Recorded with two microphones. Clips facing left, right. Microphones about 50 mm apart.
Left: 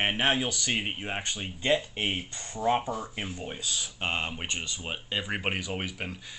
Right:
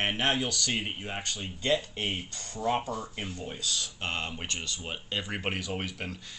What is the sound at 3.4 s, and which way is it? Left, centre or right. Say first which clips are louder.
Speech: even; centre.